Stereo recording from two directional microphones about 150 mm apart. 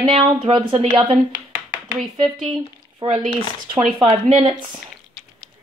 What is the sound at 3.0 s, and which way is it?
Speech, 25° right (ahead or behind).